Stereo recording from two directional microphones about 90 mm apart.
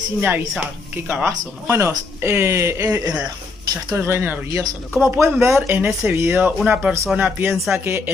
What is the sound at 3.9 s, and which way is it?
Speech, 25° right (ahead or behind).